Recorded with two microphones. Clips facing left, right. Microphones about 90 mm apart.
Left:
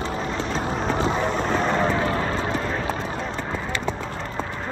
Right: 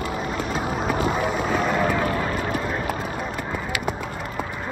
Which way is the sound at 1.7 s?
30° left (ahead or behind).